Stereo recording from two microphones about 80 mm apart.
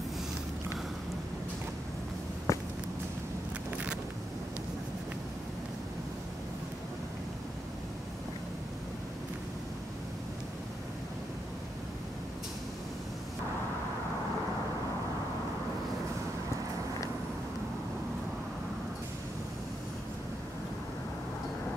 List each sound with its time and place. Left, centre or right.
2.5 s walk: left
3.7 s vehicle: centre